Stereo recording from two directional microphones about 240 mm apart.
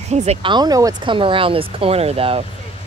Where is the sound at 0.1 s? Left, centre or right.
Right.